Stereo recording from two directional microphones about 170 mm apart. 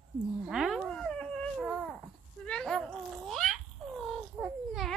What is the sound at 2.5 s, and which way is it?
Babbling, 5° left (ahead or behind).